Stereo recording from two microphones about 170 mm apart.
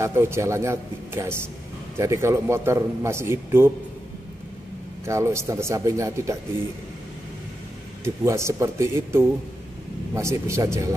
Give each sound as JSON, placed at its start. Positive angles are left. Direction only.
{"t": 0.0, "sound": "a man's voice", "side_deg": -15}
{"t": 5.0, "sound": "a man's voice", "side_deg": -15}
{"t": 8.0, "sound": "a man's voice", "side_deg": -15}